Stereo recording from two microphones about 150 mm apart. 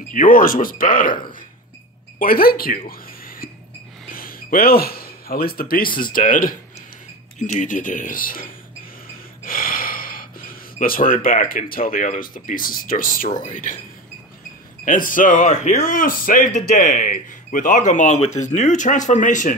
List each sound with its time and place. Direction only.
0.1 s speech: 65° left (ahead or behind)
2.1 s speech: 75° left (ahead or behind)
2.9 s a sound: 70° left (ahead or behind)
4.1 s speech: 70° left (ahead or behind)
7.3 s speech: 50° left (ahead or behind)
14.9 s speech: 65° left (ahead or behind)